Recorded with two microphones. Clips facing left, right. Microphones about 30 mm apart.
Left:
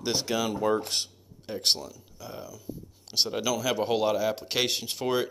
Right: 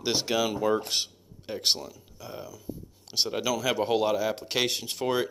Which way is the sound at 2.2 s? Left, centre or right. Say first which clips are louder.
Even; centre.